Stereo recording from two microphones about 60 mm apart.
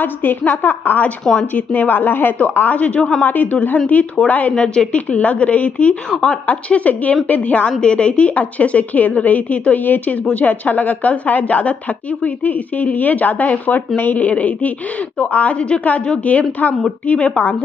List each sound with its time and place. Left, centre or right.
0.0 s a woman's voice: left